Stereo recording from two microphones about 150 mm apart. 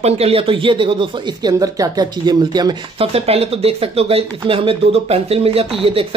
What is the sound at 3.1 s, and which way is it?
Speech, 40° right (ahead or behind).